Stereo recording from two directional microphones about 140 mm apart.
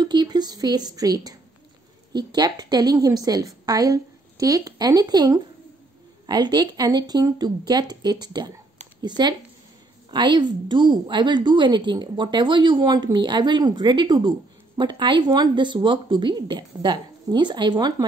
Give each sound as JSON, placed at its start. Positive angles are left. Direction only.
{"t": 0.0, "sound": "a woman's voice", "side_deg": -30}